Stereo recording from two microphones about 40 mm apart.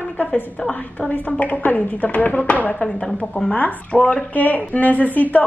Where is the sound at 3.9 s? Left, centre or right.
Left.